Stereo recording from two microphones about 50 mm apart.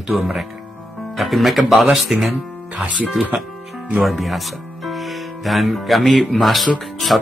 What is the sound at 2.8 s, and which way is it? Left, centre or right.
Speech, right.